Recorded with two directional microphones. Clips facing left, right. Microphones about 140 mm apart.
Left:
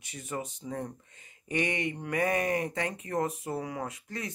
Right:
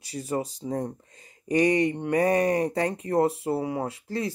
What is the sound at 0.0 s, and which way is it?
Speech, 35° right (ahead or behind).